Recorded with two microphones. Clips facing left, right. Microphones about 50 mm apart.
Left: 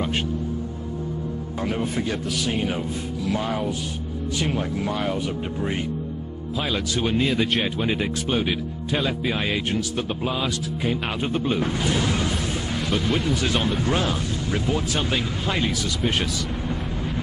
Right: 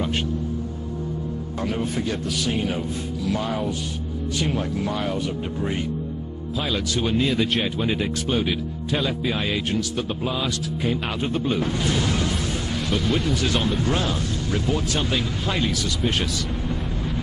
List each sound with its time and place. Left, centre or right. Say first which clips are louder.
1.6 s speech: even; centre
6.6 s speech: even; left
7.1 s speech: even; centre
8.0 s speech: even; centre
12.9 s speech: even; centre